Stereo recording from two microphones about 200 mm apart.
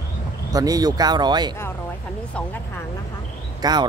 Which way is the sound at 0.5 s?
20° right (ahead or behind).